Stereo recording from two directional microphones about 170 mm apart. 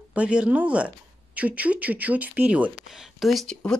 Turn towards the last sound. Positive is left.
turn(degrees=5)  # may be behind; listen again after turning